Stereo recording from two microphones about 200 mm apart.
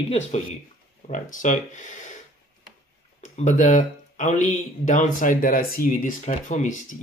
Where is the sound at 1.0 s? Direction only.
40° left (ahead or behind).